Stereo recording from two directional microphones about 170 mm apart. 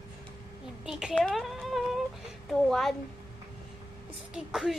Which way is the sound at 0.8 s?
5° right (ahead or behind).